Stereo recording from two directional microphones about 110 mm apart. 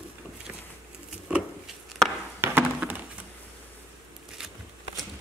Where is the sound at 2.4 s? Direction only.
20° right (ahead or behind).